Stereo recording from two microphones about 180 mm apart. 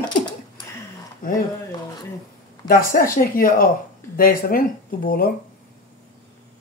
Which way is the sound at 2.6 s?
50° left (ahead or behind).